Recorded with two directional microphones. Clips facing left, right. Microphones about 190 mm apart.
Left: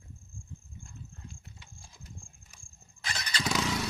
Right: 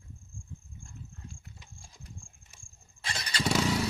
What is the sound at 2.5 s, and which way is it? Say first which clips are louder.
Vehicle: left 1 dB; 30° right (ahead or behind).